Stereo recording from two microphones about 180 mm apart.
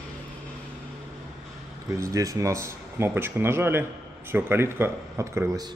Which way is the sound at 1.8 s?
15° right (ahead or behind).